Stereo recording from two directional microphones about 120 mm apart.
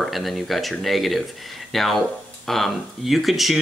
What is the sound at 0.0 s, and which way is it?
Speech, centre (ahead or behind).